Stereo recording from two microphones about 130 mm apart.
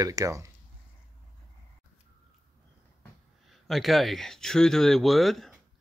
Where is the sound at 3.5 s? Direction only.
Centre (ahead or behind).